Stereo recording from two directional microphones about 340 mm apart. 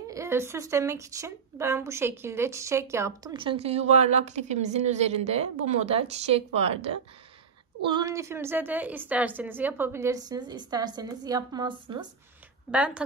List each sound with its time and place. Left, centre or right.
0.1 s a woman's voice: centre